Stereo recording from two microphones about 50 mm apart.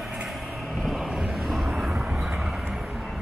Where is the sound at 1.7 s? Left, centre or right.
Centre.